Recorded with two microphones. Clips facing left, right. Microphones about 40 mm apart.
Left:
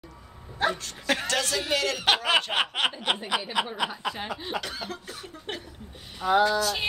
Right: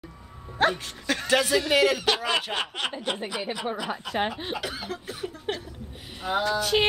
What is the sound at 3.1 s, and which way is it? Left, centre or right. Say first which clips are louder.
Speech: left 3 dB; left.